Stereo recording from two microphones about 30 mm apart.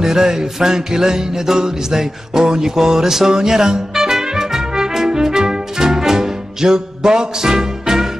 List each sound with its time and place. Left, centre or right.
0.0 s music: centre